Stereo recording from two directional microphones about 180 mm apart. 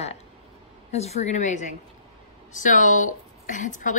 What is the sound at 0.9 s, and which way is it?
A woman's voice, 35° left (ahead or behind).